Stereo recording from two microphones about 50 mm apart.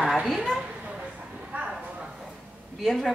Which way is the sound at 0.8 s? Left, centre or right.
Right.